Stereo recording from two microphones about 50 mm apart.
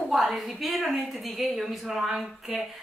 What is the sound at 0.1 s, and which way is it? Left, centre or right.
A woman's voice, centre.